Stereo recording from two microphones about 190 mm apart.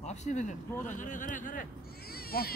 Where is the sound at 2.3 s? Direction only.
55° left (ahead or behind).